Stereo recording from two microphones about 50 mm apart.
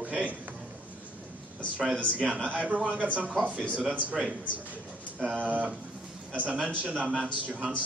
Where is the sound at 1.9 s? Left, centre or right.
Left.